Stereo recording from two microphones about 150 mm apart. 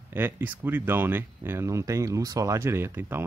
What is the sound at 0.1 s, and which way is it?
Speech, 15° right (ahead or behind).